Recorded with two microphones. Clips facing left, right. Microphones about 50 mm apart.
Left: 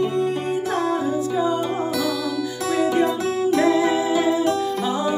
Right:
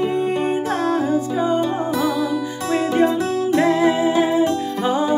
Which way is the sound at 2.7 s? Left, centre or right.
Right.